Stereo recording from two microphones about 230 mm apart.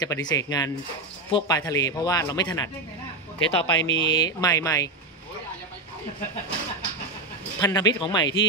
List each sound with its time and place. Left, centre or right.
0.0 s speech: centre
3.3 s speech: left
4.2 s speech: centre
7.6 s speech: centre